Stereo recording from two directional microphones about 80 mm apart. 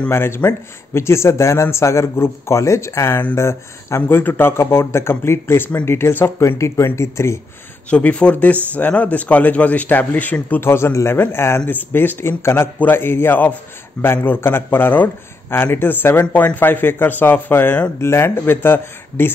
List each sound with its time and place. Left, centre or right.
0.1 s a man's voice: left
7.9 s speech: centre